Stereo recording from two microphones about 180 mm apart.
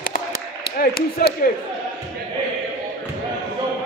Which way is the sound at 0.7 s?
55° left (ahead or behind).